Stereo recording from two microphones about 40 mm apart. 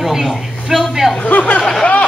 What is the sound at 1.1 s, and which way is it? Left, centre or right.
Speech, left.